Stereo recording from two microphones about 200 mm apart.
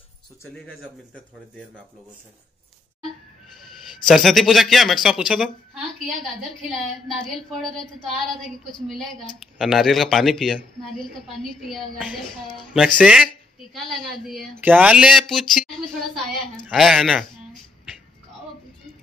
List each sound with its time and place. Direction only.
4.0 s speech: centre (ahead or behind)
6.7 s speech: centre (ahead or behind)
8.8 s speech: centre (ahead or behind)
16.6 s speech: centre (ahead or behind)